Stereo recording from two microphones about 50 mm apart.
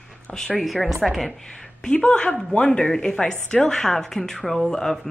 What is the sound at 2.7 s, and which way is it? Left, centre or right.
Speech, centre.